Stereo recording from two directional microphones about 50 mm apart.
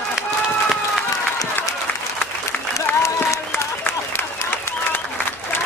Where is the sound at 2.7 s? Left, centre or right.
Left.